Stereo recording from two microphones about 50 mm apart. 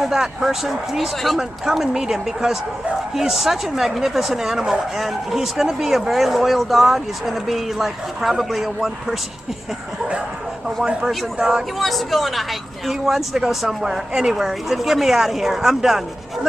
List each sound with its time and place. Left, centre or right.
0.0 s speech: centre
11.3 s speech: centre
11.8 s speech: centre